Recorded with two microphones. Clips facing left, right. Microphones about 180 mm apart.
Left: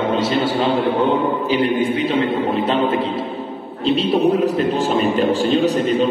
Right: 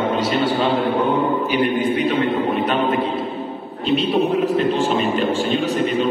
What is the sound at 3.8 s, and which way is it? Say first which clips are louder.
A man's voice: left 2 dB; 35° left (ahead or behind).